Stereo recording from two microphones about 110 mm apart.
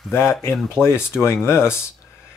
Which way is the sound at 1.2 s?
25° left (ahead or behind).